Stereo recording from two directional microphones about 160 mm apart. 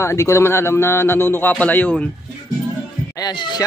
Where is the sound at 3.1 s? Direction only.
25° left (ahead or behind).